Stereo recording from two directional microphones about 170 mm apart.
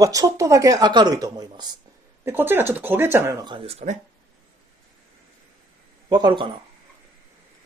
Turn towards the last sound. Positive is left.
turn(degrees=-25)  # may be behind; listen again after turning